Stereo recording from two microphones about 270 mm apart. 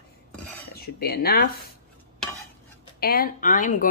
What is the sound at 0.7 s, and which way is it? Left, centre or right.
Speech, left.